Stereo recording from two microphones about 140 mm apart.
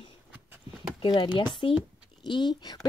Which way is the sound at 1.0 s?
35° left (ahead or behind).